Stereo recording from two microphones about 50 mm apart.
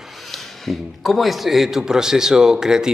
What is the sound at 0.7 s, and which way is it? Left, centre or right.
A man's voice, centre.